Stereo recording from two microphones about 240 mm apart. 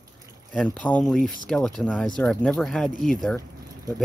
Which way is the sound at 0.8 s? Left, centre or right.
Centre.